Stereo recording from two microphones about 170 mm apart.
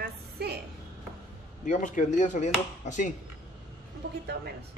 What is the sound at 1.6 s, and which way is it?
Speech, 45° left (ahead or behind).